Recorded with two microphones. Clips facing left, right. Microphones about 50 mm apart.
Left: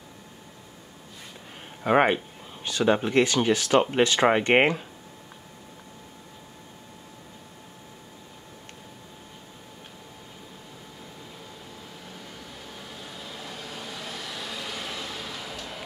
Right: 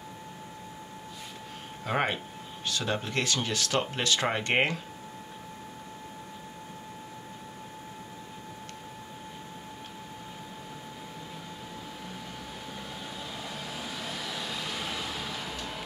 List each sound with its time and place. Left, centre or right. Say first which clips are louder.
1.9 s speech: left 8 dB; left
12.9 s vehicle: right 1 dB; centre